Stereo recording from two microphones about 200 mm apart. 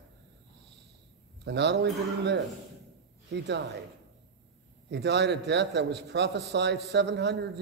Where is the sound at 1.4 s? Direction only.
60° right (ahead or behind).